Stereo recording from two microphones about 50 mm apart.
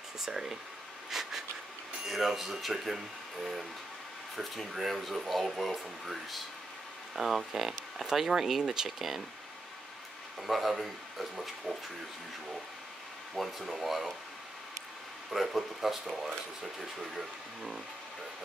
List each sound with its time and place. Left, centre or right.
0.2 s speech: centre
1.1 s a sound: centre
2.0 s speech: centre
4.7 s speech: centre
10.4 s speech: centre
13.3 s speech: centre
15.3 s speech: centre